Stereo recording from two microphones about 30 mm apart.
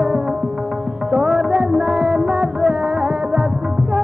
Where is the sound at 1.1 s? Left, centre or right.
Centre.